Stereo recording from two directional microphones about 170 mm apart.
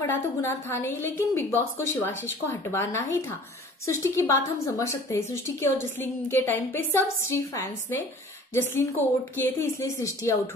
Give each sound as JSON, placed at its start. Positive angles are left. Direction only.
{"t": 0.0, "sound": "a woman's voice", "side_deg": 15}